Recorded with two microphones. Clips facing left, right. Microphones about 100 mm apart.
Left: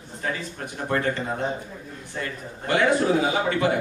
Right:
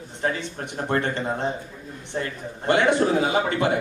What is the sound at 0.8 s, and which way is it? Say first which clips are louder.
A man's voice: even; 30° right (ahead or behind).